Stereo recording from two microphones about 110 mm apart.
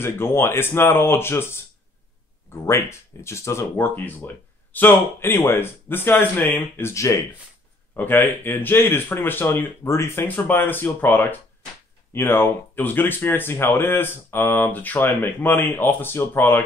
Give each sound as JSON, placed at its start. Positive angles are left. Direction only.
{"t": 0.0, "sound": "speech", "side_deg": 25}